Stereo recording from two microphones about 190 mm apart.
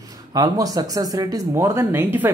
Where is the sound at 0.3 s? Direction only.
20° right (ahead or behind).